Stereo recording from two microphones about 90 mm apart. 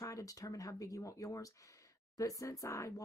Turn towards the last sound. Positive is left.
turn(degrees=35)  # may be behind; listen again after turning